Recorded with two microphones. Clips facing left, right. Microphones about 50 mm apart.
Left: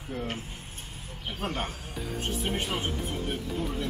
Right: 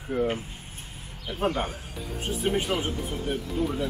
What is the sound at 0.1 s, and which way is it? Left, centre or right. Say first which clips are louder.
Speech: right 8 dB; centre.